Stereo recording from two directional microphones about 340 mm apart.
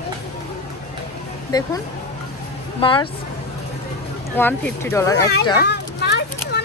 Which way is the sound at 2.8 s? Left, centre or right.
Centre.